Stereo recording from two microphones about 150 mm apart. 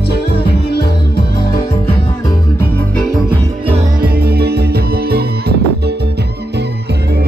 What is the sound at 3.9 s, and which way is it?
Music, 90° right.